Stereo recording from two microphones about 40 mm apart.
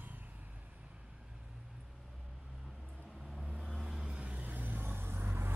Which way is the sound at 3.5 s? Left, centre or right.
Centre.